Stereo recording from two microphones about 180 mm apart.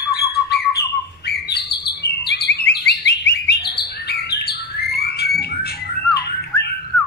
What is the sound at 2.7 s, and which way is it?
Bird, 70° left (ahead or behind).